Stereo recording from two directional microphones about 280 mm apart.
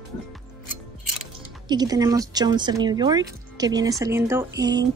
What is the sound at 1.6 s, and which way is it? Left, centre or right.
Speech, centre.